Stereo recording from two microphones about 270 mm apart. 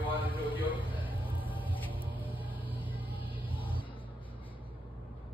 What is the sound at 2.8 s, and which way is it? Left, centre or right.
Vehicle, centre.